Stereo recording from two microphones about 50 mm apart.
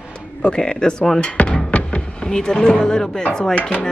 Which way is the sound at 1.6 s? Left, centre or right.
Left.